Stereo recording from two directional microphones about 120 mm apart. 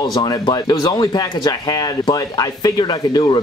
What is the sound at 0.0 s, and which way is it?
Speech, 35° left (ahead or behind).